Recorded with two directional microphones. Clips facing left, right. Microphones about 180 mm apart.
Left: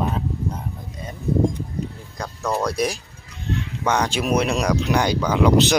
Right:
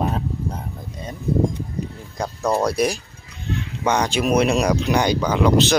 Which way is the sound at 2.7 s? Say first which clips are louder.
Right 3 dB; 5° right (ahead or behind).